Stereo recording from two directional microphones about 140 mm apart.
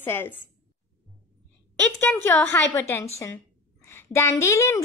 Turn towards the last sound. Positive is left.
turn(degrees=20)  # may be behind; listen again after turning